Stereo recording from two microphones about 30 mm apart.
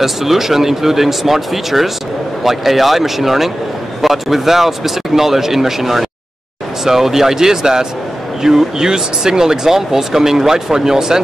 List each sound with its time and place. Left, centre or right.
0.0 s speech: centre